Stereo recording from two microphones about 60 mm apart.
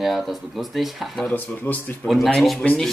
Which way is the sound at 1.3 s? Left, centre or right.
Left.